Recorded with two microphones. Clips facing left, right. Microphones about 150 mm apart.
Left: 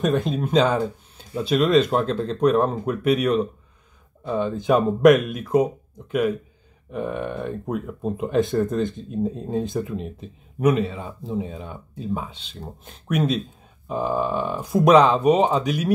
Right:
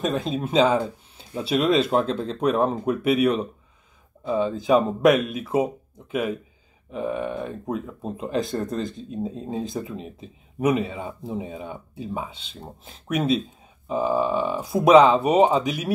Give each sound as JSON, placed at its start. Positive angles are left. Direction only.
{"t": 0.0, "sound": "speech", "side_deg": 0}
{"t": 6.9, "sound": "speech", "side_deg": 0}
{"t": 11.1, "sound": "speech", "side_deg": -15}
{"t": 11.4, "sound": "speech", "side_deg": -5}